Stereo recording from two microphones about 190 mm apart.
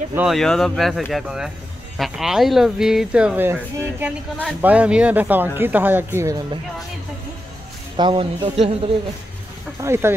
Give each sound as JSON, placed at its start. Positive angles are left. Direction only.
{"t": 0.1, "sound": "speech", "side_deg": -5}
{"t": 7.9, "sound": "speech", "side_deg": -30}
{"t": 9.8, "sound": "speech", "side_deg": -15}